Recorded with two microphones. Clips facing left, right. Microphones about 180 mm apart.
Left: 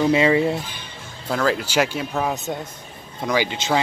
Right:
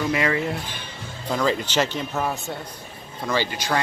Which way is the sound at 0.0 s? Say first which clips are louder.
Left 6 dB; 25° left (ahead or behind).